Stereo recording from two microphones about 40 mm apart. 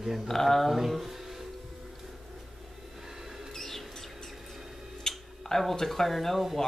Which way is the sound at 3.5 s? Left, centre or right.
Centre.